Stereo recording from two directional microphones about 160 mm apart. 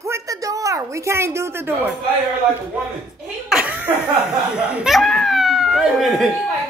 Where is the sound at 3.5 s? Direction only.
5° right (ahead or behind).